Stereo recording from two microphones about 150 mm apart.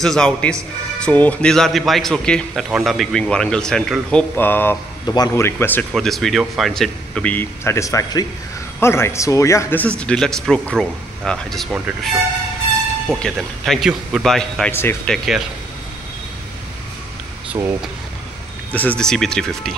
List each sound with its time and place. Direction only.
0.0 s speech: 5° left (ahead or behind)
5.0 s speech: 25° left (ahead or behind)
5.9 s speech: centre (ahead or behind)
13.1 s speech: centre (ahead or behind)
14.7 s speech: 15° left (ahead or behind)
15.0 s speech: centre (ahead or behind)
18.7 s speech: 10° left (ahead or behind)